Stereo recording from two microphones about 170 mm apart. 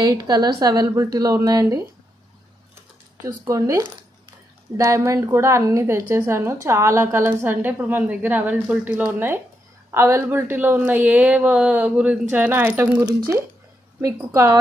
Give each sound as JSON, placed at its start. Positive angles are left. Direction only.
{"t": 0.0, "sound": "a woman's voice", "side_deg": -25}
{"t": 3.4, "sound": "a woman's voice", "side_deg": -20}